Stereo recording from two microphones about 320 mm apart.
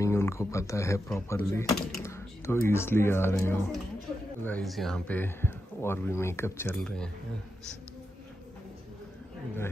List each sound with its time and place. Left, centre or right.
0.0 s speech: centre